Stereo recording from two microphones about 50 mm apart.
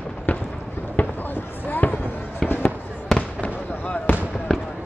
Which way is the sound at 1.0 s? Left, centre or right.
Left.